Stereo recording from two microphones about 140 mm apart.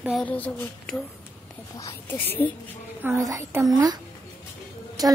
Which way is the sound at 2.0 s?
15° left (ahead or behind).